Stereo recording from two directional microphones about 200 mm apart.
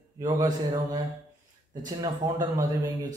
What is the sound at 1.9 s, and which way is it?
Speech, 20° right (ahead or behind).